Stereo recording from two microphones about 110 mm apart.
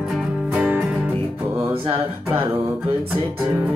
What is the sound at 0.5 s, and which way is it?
Music, 15° right (ahead or behind).